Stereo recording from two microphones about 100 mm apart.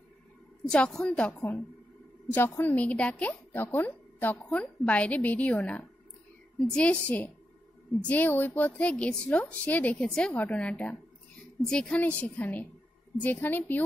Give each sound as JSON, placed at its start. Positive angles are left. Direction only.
{"t": 0.7, "sound": "a woman's voice", "side_deg": 5}
{"t": 2.3, "sound": "a woman's voice", "side_deg": 20}